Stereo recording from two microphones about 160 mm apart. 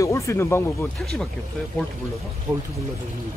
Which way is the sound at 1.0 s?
Centre (ahead or behind).